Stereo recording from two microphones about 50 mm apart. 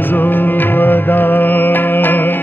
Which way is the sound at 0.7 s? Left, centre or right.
Left.